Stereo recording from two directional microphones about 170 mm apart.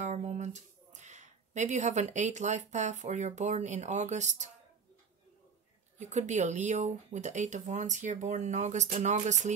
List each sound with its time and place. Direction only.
0.0 s speech: 45° right (ahead or behind)
5.9 s speech: 45° right (ahead or behind)